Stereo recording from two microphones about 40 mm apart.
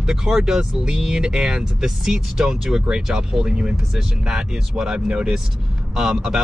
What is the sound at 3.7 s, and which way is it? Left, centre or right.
Speech, centre.